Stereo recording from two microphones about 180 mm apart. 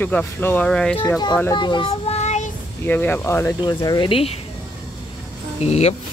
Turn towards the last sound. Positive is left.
turn(degrees=35)  # may be behind; listen again after turning